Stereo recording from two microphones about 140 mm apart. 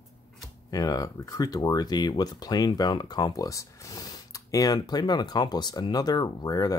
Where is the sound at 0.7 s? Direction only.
25° left (ahead or behind).